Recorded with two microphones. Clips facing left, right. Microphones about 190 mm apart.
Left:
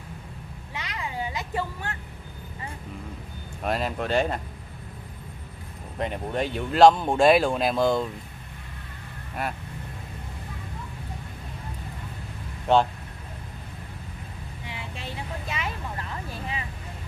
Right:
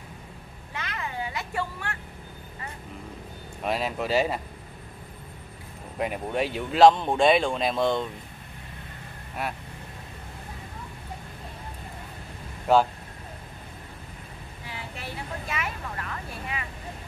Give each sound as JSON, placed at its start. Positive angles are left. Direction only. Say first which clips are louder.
{"t": 0.7, "sound": "a sound", "louder": "left 1 dB", "side_deg": 15}
{"t": 3.6, "sound": "speech", "louder": "left 1 dB", "side_deg": 0}
{"t": 5.9, "sound": "speech", "louder": "even", "side_deg": -5}
{"t": 9.4, "sound": "speech", "louder": "left 1 dB", "side_deg": 0}
{"t": 12.7, "sound": "speech", "louder": "even", "side_deg": -5}
{"t": 15.5, "sound": "vehicle", "louder": "even", "side_deg": 30}